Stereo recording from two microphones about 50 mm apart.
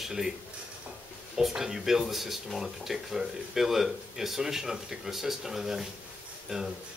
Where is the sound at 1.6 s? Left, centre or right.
Centre.